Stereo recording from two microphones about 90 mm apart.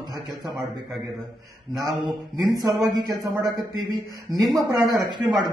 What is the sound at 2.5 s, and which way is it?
Speech, 45° right (ahead or behind).